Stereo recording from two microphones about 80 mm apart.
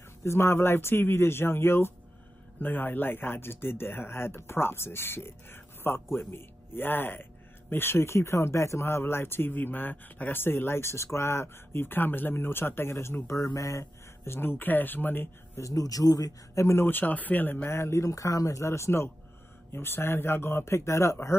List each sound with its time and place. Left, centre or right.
0.2 s speech: left
15.6 s speech: left